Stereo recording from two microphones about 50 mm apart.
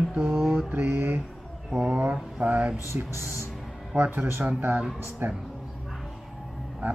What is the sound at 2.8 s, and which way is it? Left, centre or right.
Speech, right.